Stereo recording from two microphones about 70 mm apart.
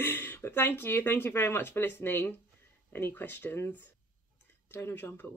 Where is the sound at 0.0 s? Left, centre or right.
Left.